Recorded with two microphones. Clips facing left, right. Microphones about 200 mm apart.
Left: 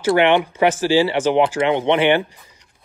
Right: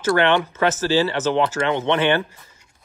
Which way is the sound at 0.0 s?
15° left (ahead or behind).